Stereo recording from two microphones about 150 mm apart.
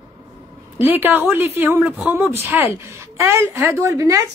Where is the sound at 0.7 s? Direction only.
15° right (ahead or behind).